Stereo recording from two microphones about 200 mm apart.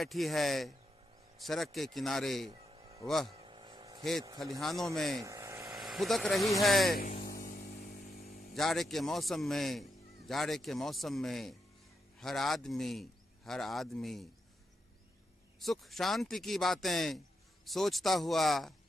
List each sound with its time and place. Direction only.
0.0 s a man's voice: centre (ahead or behind)
2.6 s a sound: 25° right (ahead or behind)
3.1 s a man's voice: centre (ahead or behind)
3.3 s vehicle: 25° right (ahead or behind)
4.6 s a man's voice: centre (ahead or behind)
5.2 s vehicle: 15° right (ahead or behind)
5.8 s a man's voice: centre (ahead or behind)
7.0 s a sound: 45° left (ahead or behind)
8.5 s a man's voice: centre (ahead or behind)
15.6 s a man's voice: centre (ahead or behind)